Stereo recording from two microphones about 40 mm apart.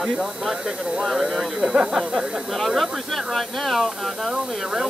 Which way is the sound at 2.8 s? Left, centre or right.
Centre.